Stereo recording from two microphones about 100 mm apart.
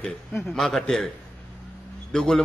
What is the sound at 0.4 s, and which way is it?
Speech, 5° left (ahead or behind).